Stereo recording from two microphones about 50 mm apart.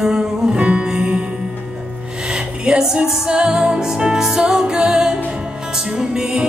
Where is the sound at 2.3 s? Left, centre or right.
Centre.